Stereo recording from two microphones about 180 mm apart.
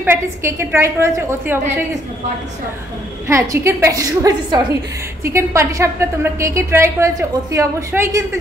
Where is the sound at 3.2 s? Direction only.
15° right (ahead or behind).